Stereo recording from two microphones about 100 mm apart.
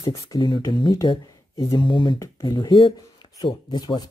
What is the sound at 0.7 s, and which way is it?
Speech, 50° left (ahead or behind).